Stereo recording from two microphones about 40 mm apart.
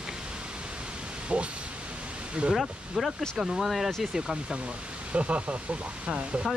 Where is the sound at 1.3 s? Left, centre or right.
Right.